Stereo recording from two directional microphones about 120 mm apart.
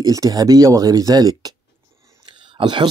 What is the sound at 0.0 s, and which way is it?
Speech, 30° right (ahead or behind).